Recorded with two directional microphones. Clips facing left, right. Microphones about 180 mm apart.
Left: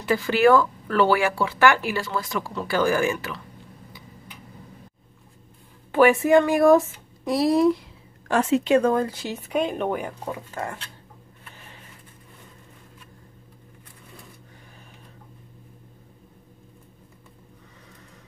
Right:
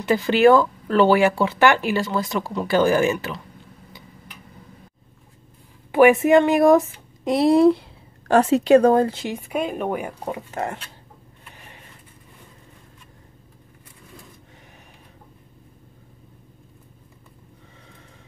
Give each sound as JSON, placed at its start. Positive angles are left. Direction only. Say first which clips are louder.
{"t": 0.0, "sound": "speech", "louder": "right 3 dB", "side_deg": -20}
{"t": 5.9, "sound": "speech", "louder": "right 3 dB", "side_deg": -15}
{"t": 10.5, "sound": "speech", "louder": "right 4 dB", "side_deg": -25}